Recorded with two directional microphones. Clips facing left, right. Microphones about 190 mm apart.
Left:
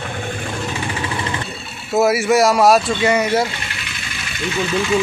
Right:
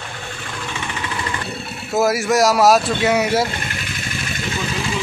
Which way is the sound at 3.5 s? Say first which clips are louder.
Right 3 dB; 45° right (ahead or behind).